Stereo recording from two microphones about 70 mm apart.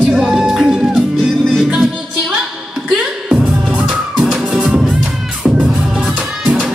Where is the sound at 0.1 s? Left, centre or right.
Centre.